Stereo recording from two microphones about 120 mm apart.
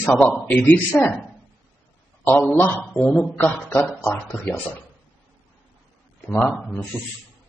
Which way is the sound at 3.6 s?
20° left (ahead or behind).